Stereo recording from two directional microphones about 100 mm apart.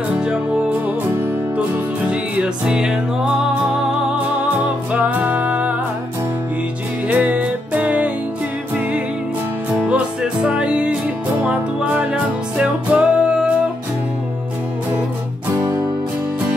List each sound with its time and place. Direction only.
2.0 s music: 10° right (ahead or behind)
4.9 s music: 15° right (ahead or behind)
7.1 s music: 15° right (ahead or behind)
9.7 s music: 15° right (ahead or behind)